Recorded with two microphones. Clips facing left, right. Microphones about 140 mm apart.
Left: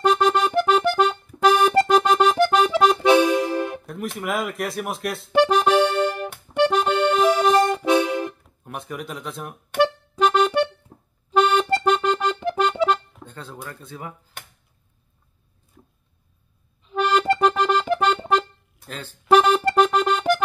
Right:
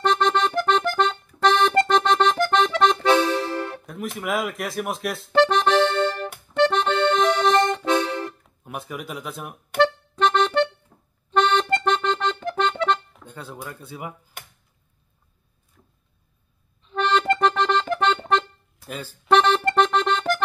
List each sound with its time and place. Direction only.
0.0 s music: 5° left (ahead or behind)
2.5 s accordion: 5° left (ahead or behind)
3.8 s speech: centre (ahead or behind)
5.3 s accordion: 10° left (ahead or behind)
8.6 s speech: 5° right (ahead or behind)
9.8 s music: 5° left (ahead or behind)
10.9 s accordion: 40° left (ahead or behind)
11.2 s accordion: 5° left (ahead or behind)
13.2 s a sound: 10° right (ahead or behind)
16.8 s accordion: 5° left (ahead or behind)
18.9 s music: 10° right (ahead or behind)
19.2 s music: 5° left (ahead or behind)